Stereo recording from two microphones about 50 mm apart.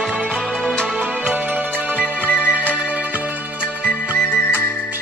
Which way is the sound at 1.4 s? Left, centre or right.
Right.